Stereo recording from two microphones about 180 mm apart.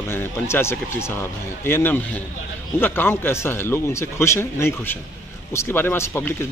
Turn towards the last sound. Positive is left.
turn(degrees=10)  # may be behind; listen again after turning